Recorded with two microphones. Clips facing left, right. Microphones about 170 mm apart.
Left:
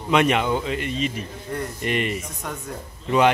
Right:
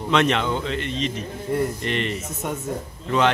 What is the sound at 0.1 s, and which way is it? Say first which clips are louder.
A man's voice: left 1 dB; 10° left (ahead or behind).